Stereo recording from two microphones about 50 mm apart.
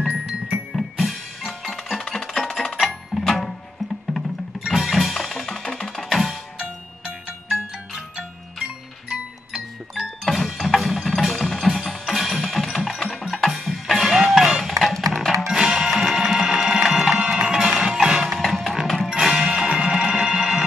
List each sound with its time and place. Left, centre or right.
0.0 s music: centre
0.7 s music: centre
4.6 s percussion: centre
7.4 s music: centre
9.9 s percussion: centre
13.5 s music: centre
15.4 s music: centre